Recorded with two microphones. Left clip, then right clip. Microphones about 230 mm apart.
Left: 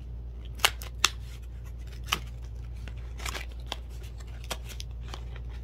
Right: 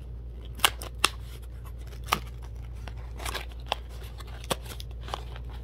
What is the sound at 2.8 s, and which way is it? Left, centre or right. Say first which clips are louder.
Scissors: right 1 dB; right.